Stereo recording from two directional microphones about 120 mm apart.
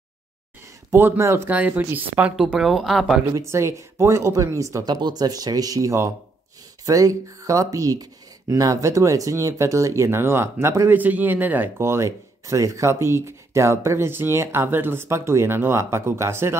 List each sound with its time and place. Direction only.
0.9 s speech: 20° right (ahead or behind)
2.3 s speech: 5° right (ahead or behind)
3.3 s speech: 25° right (ahead or behind)